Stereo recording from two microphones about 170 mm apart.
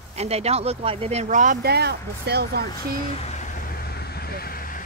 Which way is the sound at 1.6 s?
70° right (ahead or behind).